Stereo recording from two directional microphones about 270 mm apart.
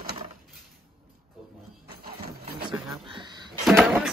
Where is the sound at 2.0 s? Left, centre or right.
Right.